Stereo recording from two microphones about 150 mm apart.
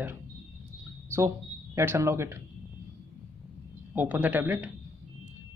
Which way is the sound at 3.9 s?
10° right (ahead or behind).